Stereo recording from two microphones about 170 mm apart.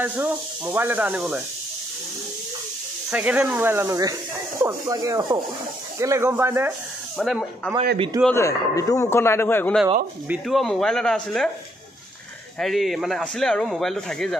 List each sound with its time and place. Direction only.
0.0 s speech: 10° right (ahead or behind)
3.1 s speech: 10° right (ahead or behind)
7.2 s speech: centre (ahead or behind)
8.3 s speech: 20° left (ahead or behind)
10.2 s speech: 5° right (ahead or behind)
12.5 s speech: centre (ahead or behind)